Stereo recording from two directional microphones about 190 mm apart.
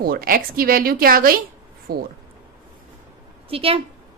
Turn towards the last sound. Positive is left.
turn(degrees=-30)  # may be behind; listen again after turning